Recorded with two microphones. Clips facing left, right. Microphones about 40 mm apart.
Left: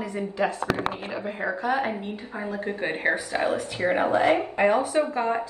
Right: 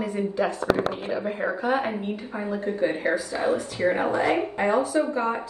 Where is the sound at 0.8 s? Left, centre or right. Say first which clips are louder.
Right 2 dB; left.